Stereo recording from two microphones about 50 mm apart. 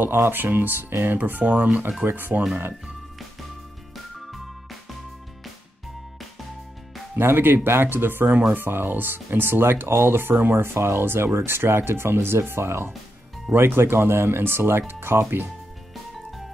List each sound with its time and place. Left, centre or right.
0.0 s speech: right
1.4 s speech: right
2.0 s speech: right
7.2 s speech: right
10.3 s speech: right
10.6 s speech: right